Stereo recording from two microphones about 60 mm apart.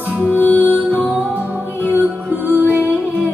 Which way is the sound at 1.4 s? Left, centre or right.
Right.